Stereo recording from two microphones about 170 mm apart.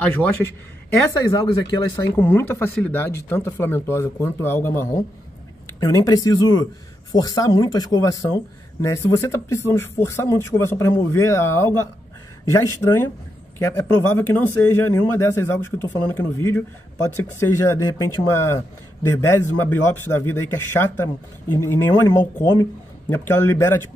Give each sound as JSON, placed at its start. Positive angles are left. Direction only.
{"t": 0.2, "sound": "speech", "side_deg": 10}
{"t": 2.1, "sound": "a man's voice", "side_deg": 10}